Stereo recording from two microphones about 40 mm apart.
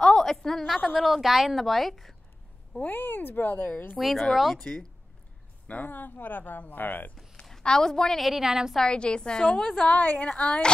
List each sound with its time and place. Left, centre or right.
0.0 s a sound: centre
1.0 s a woman's voice: centre
2.8 s speech: left
3.9 s a woman's voice: centre
5.7 s a woman's voice: left
7.6 s a woman's voice: centre
8.2 s a woman's voice: centre
8.7 s a woman's voice: left
10.1 s a woman's voice: left